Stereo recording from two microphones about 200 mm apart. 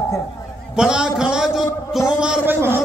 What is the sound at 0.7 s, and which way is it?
A man's voice, 5° right (ahead or behind).